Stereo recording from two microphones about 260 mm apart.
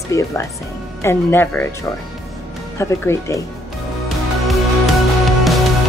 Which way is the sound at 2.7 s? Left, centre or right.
Centre.